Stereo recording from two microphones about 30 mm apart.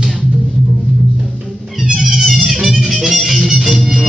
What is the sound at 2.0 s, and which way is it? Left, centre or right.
Music, centre.